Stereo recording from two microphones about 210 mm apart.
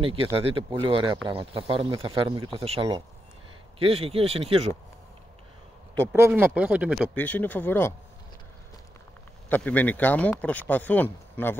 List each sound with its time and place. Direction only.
0.0 s speech: 25° right (ahead or behind)
6.1 s speech: 10° right (ahead or behind)
7.2 s speech: 10° left (ahead or behind)
9.5 s speech: 5° left (ahead or behind)